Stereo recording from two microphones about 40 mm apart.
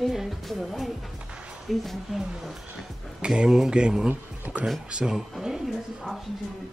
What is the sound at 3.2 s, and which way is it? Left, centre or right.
Speech, right.